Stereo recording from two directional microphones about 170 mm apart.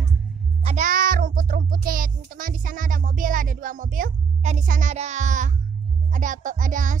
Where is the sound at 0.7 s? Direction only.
50° right (ahead or behind).